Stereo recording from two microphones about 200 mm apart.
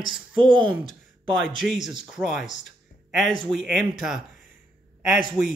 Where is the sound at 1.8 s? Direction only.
20° right (ahead or behind).